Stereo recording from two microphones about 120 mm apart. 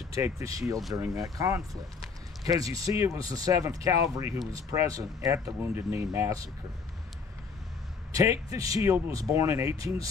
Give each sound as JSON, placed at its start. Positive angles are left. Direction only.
{"t": 0.1, "sound": "speech", "side_deg": -25}
{"t": 8.1, "sound": "speech", "side_deg": -30}